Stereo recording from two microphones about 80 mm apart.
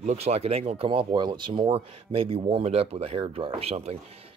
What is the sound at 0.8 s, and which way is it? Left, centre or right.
Speech, right.